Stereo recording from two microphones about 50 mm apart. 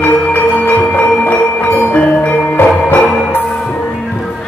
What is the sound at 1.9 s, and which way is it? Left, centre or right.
Music, left.